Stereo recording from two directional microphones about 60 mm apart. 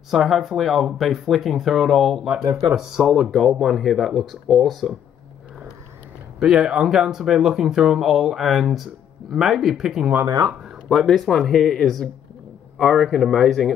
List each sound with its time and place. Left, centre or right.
0.1 s speech: centre
6.4 s speech: centre
10.2 s speech: right
10.9 s speech: centre